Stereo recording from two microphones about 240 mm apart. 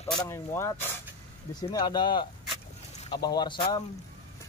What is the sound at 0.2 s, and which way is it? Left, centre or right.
Speech, centre.